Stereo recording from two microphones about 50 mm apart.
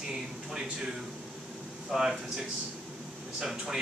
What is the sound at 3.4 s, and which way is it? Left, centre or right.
Speech, centre.